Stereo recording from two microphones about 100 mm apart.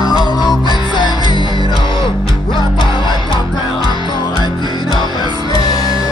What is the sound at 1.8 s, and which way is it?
Music, 55° left (ahead or behind).